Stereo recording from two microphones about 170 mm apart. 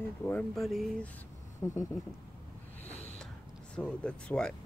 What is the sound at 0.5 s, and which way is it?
Speech, centre (ahead or behind).